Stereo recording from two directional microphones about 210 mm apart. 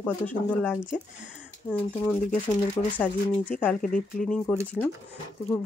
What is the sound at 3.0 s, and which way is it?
Speech, 10° left (ahead or behind).